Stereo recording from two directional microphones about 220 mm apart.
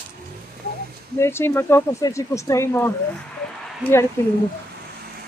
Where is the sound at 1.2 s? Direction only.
10° left (ahead or behind).